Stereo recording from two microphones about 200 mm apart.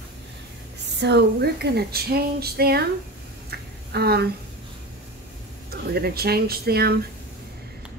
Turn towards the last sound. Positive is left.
turn(degrees=-50)  # may be behind; listen again after turning